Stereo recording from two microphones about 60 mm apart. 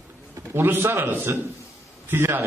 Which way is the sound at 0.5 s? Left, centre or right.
Right.